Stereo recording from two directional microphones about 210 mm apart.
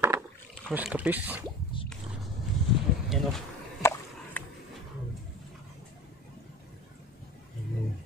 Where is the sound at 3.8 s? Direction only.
10° left (ahead or behind).